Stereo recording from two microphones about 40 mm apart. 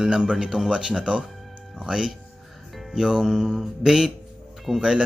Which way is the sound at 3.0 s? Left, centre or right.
Centre.